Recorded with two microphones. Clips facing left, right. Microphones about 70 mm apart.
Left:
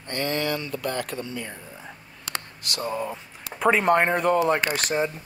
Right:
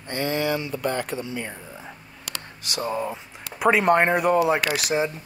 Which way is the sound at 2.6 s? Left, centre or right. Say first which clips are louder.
Right 2 dB; right.